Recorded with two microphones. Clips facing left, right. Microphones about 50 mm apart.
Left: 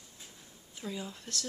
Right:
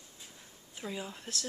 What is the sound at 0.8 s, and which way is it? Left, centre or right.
Speech, centre.